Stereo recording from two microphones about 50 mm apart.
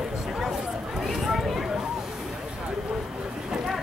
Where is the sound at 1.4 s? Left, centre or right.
Centre.